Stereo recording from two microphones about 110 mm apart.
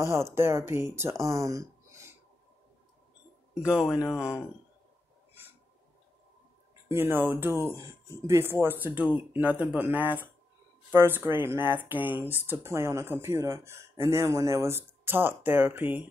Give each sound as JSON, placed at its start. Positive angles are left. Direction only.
{"t": 0.0, "sound": "speech", "side_deg": -25}
{"t": 1.2, "sound": "a sound", "side_deg": -30}
{"t": 3.6, "sound": "speech", "side_deg": -5}
{"t": 4.2, "sound": "speech", "side_deg": 25}
{"t": 6.9, "sound": "speech", "side_deg": -20}